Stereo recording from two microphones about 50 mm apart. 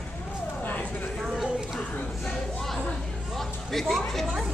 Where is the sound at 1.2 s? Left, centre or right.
Centre.